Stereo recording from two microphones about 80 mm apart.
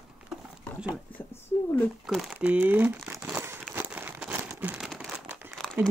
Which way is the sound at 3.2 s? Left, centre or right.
Right.